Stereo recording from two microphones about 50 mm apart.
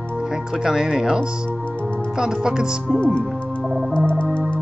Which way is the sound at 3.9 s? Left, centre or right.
Left.